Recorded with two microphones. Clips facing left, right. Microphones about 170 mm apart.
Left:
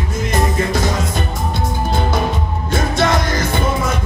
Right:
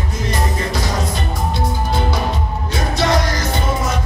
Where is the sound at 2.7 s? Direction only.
50° left (ahead or behind).